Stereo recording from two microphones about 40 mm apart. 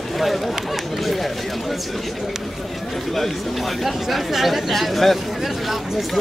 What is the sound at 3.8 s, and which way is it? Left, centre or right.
Speech, centre.